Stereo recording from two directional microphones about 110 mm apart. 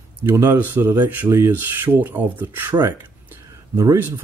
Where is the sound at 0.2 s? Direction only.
30° right (ahead or behind).